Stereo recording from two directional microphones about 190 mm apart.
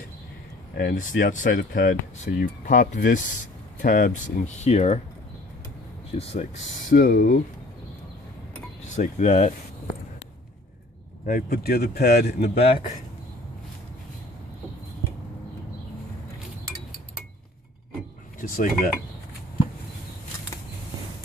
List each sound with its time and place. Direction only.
0.7 s speech: 50° left (ahead or behind)
6.1 s speech: 35° left (ahead or behind)
8.8 s speech: 40° left (ahead or behind)
11.2 s speech: 50° left (ahead or behind)
18.4 s speech: 45° left (ahead or behind)